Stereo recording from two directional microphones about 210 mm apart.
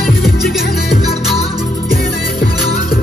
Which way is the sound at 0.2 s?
Centre (ahead or behind).